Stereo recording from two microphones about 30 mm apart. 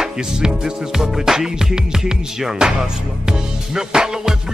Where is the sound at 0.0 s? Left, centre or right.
Right.